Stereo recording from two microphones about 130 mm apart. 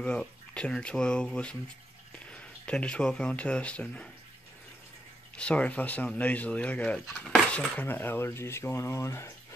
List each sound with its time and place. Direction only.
0.0 s speech: 10° left (ahead or behind)
5.3 s speech: 10° left (ahead or behind)